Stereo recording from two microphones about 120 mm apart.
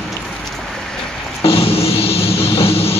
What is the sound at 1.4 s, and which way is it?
Music, 50° left (ahead or behind).